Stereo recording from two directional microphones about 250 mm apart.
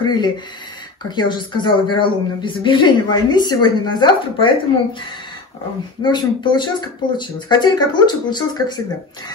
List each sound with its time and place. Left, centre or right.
0.0 s a woman's voice: centre
6.1 s a woman's voice: centre